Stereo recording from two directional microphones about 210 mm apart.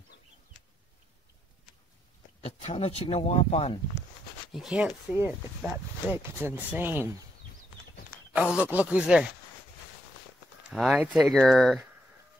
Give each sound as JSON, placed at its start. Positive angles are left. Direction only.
{"t": 2.4, "sound": "speech", "side_deg": 30}
{"t": 4.5, "sound": "speech", "side_deg": 0}
{"t": 6.1, "sound": "speech", "side_deg": -10}
{"t": 8.4, "sound": "speech", "side_deg": -5}
{"t": 10.7, "sound": "speech", "side_deg": 0}